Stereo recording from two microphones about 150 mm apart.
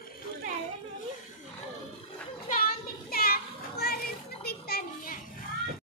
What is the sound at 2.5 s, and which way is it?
Children playing, 80° left.